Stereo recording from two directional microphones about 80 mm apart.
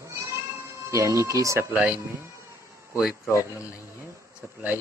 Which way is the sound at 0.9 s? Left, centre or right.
Right.